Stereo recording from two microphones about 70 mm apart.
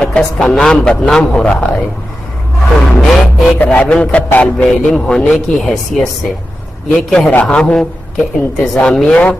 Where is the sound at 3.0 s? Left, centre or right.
Centre.